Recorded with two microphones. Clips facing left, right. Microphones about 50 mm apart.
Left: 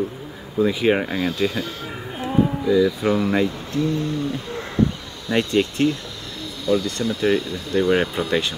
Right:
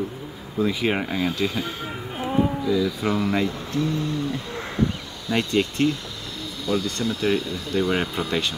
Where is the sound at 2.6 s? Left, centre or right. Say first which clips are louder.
Left 5 dB; left.